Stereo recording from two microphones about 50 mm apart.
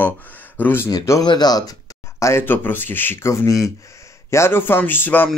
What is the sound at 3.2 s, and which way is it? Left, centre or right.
Speech, left.